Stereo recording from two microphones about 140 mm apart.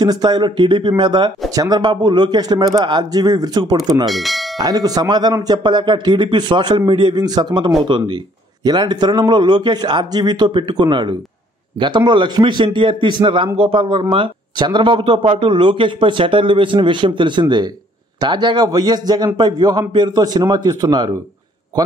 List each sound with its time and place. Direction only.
0.0 s a man's voice: 30° right (ahead or behind)
4.1 s speech: centre (ahead or behind)
4.6 s speech: 25° right (ahead or behind)